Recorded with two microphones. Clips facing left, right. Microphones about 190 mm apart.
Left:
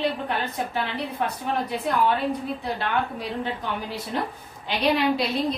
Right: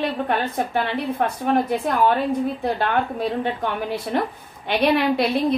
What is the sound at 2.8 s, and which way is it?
A woman's voice, 50° right (ahead or behind).